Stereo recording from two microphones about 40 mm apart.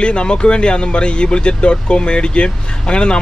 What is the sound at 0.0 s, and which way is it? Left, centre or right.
Speech, left.